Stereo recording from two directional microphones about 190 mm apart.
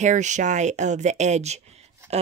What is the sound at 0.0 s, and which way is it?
Speech, 40° right (ahead or behind).